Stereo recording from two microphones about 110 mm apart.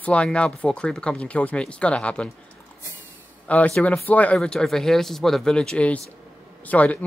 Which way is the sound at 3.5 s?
10° left (ahead or behind).